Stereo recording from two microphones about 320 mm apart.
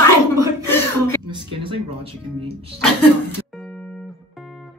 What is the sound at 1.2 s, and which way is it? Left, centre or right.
Speech, centre.